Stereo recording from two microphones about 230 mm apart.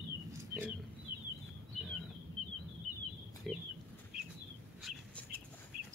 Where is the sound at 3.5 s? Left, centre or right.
Centre.